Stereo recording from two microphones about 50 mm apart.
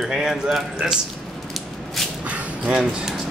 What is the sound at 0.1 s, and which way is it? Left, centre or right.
Speech, centre.